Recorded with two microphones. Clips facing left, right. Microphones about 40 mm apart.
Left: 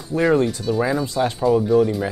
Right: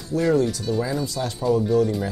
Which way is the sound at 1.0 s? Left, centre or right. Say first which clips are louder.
Left 6 dB; left.